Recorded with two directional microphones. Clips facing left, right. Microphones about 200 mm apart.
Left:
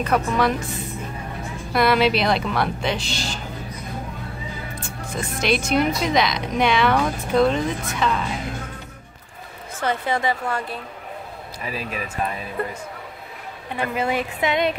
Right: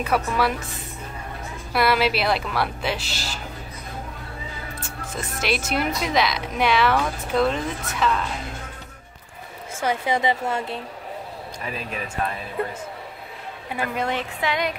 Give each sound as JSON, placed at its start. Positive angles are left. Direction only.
{"t": 0.0, "sound": "a woman's voice", "side_deg": -5}
{"t": 1.7, "sound": "a woman's voice", "side_deg": -5}
{"t": 5.1, "sound": "a woman's voice", "side_deg": -5}
{"t": 9.8, "sound": "a woman's voice", "side_deg": -15}
{"t": 11.6, "sound": "a woman's voice", "side_deg": 5}
{"t": 13.9, "sound": "a woman's voice", "side_deg": 10}
{"t": 14.4, "sound": "a sound", "side_deg": 25}